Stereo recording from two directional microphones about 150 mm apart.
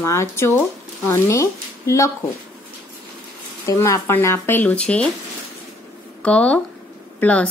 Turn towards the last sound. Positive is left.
turn(degrees=10)  # may be behind; listen again after turning